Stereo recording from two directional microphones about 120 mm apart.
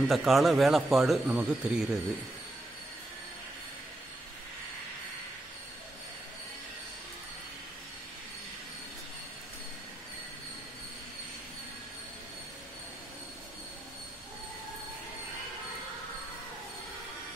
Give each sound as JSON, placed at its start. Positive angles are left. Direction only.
{"t": 0.1, "sound": "speech", "side_deg": 0}